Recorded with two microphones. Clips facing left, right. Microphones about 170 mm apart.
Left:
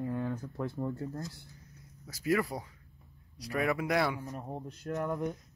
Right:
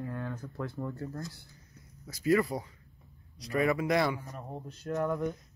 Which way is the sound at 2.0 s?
10° left (ahead or behind).